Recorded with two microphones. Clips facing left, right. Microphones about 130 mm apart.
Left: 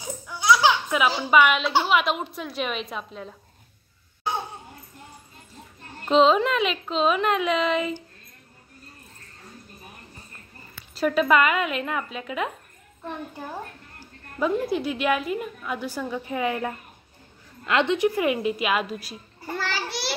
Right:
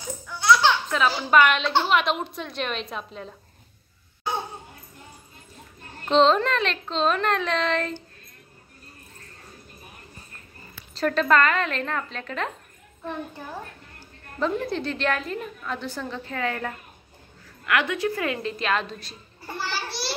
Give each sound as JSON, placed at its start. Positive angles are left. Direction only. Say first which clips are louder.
{"t": 0.0, "sound": "speech", "louder": "even", "side_deg": 15}
{"t": 6.0, "sound": "speech", "louder": "left 1 dB", "side_deg": 5}
{"t": 11.0, "sound": "a woman's voice", "louder": "left 1 dB", "side_deg": 10}
{"t": 13.9, "sound": "a woman's voice", "louder": "left 1 dB", "side_deg": 10}